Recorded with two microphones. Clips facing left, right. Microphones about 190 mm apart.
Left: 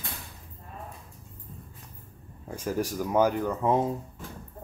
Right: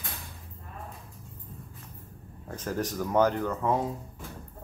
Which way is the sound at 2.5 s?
10° left (ahead or behind).